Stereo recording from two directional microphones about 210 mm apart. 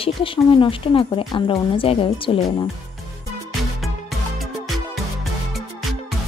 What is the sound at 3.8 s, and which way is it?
Music, centre (ahead or behind).